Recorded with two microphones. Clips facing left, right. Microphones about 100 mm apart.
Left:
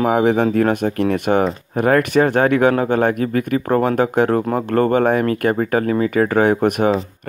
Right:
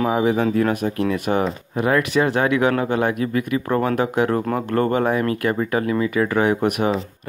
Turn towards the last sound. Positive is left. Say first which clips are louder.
# left 4 dB
turn(degrees=45)  # may be behind; listen again after turning